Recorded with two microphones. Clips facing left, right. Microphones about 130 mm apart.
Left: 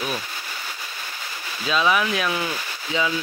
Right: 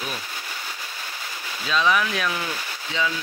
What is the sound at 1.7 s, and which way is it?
Speech, 10° left (ahead or behind).